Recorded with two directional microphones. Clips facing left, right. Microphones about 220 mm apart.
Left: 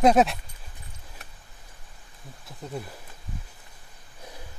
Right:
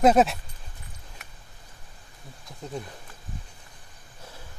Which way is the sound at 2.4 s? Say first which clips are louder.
Even; 5° left (ahead or behind).